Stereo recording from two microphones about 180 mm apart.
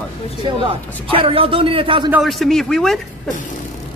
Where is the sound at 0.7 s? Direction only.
30° right (ahead or behind).